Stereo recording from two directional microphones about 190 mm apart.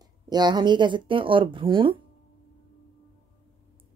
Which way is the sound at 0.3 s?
20° right (ahead or behind).